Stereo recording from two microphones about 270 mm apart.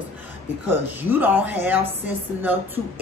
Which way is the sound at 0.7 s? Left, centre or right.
Centre.